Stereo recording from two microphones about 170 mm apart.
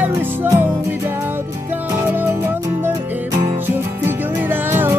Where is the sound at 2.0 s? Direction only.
15° right (ahead or behind).